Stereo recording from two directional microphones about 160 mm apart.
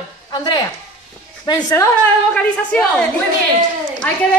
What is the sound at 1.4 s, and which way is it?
Speech, 25° left (ahead or behind).